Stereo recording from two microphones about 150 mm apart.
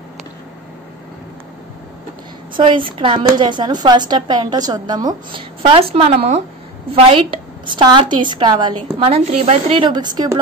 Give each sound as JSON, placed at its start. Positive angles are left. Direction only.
{"t": 2.5, "sound": "a woman's voice", "side_deg": -35}
{"t": 9.0, "sound": "a woman's voice", "side_deg": -40}